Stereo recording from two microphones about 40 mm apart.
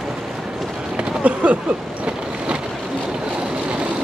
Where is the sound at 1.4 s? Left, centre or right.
Right.